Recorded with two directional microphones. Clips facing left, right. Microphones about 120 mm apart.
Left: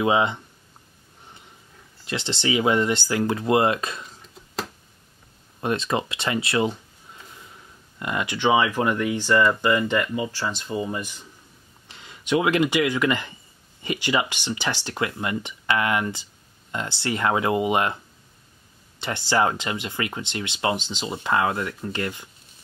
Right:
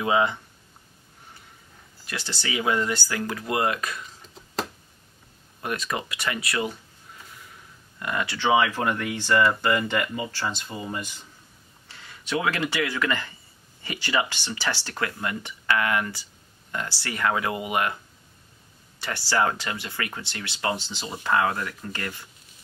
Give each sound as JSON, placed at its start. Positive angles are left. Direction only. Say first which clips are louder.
{"t": 0.0, "sound": "speech", "louder": "left 2 dB", "side_deg": 20}
{"t": 2.0, "sound": "speech", "louder": "left 7 dB", "side_deg": 25}
{"t": 5.6, "sound": "speech", "louder": "left 5 dB", "side_deg": 25}
{"t": 8.0, "sound": "speech", "louder": "left 3 dB", "side_deg": 20}
{"t": 9.7, "sound": "speech", "louder": "left 3 dB", "side_deg": -15}
{"t": 11.9, "sound": "speech", "louder": "left 6 dB", "side_deg": 20}
{"t": 18.9, "sound": "speech", "louder": "left 2 dB", "side_deg": 20}